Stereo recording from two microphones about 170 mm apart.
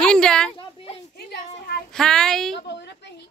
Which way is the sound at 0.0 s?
5° left (ahead or behind).